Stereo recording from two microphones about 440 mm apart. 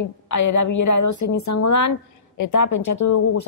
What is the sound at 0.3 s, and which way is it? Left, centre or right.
A woman's voice, left.